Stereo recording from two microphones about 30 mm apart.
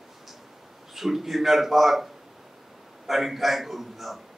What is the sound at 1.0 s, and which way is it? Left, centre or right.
A man's voice, centre.